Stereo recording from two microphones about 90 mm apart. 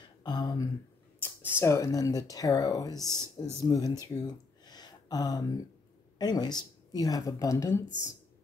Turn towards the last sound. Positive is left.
turn(degrees=35)  # may be behind; listen again after turning